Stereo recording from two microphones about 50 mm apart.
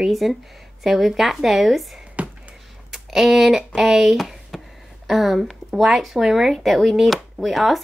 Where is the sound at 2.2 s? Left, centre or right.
Right.